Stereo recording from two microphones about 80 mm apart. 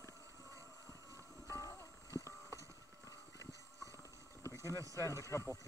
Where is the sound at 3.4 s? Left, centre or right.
Right.